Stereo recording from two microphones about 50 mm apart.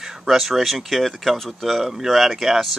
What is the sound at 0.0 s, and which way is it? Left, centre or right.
Speech, centre.